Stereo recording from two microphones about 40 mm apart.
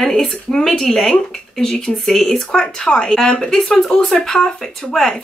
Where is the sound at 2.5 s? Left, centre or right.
Left.